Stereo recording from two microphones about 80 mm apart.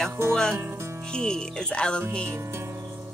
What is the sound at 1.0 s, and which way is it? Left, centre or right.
Speech, centre.